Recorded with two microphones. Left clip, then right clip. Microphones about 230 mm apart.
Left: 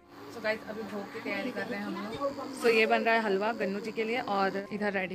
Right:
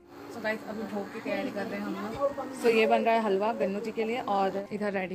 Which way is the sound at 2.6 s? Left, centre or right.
Centre.